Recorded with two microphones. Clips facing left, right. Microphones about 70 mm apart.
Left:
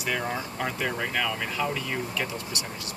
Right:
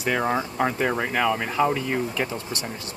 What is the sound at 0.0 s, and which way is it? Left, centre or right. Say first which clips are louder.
Speech: right 6 dB; right.